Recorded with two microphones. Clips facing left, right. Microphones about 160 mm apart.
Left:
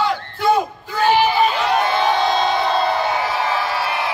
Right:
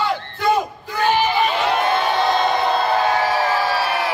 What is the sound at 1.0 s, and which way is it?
Speech, 10° left (ahead or behind).